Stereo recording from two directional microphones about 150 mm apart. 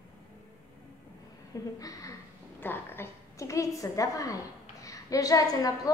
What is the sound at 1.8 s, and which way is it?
A woman's voice, 25° left (ahead or behind).